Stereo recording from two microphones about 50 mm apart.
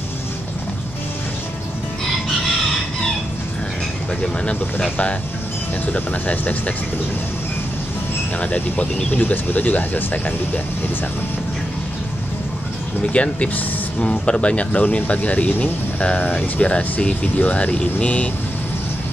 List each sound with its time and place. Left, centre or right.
4.2 s speech: left
8.4 s speech: left
13.0 s speech: left